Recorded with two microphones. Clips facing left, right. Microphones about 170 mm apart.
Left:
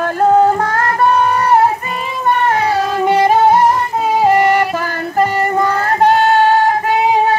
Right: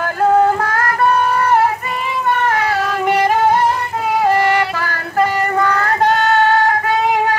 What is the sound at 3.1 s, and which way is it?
Music, 20° left (ahead or behind).